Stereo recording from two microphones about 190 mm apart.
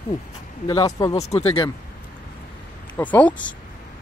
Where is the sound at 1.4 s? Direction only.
25° left (ahead or behind).